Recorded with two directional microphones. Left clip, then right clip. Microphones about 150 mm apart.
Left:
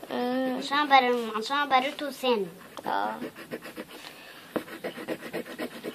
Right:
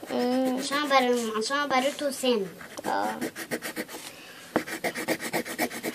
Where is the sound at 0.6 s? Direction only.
65° left (ahead or behind).